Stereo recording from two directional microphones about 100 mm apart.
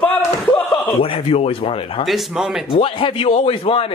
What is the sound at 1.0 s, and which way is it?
Speech, 75° left (ahead or behind).